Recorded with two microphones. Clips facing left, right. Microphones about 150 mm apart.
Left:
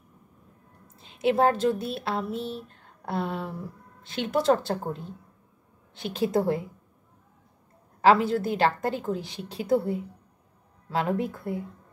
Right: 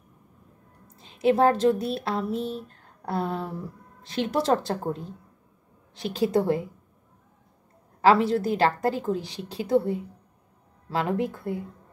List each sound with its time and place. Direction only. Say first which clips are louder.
1.0 s a woman's voice: right 2 dB; 35° right (ahead or behind)
8.0 s a woman's voice: right 1 dB; 35° right (ahead or behind)